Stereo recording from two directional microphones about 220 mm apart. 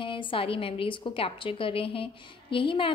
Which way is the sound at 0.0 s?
25° left (ahead or behind).